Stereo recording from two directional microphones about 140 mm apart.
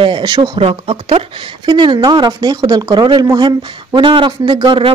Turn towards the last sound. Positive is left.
turn(degrees=-35)  # may be behind; listen again after turning